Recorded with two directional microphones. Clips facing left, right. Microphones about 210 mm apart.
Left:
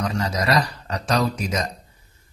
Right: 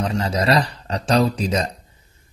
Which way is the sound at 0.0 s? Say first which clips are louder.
Right 3 dB; 25° right (ahead or behind).